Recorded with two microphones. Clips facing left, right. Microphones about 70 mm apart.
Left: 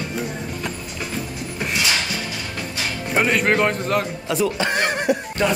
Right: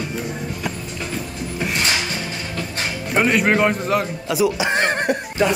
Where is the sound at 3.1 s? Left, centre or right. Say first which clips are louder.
Right 1 dB; centre.